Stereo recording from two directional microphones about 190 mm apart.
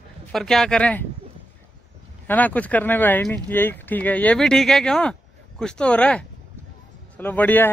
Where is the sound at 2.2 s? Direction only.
10° left (ahead or behind).